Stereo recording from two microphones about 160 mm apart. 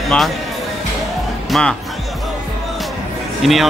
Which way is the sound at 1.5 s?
5° left (ahead or behind).